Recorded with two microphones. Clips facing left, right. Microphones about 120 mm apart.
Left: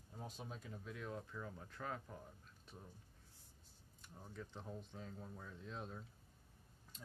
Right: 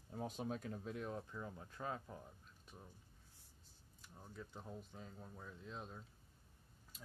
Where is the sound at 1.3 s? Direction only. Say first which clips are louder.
Right 1 dB; 20° right (ahead or behind).